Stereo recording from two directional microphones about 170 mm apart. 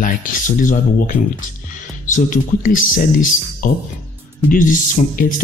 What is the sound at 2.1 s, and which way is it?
Speech, 50° left (ahead or behind).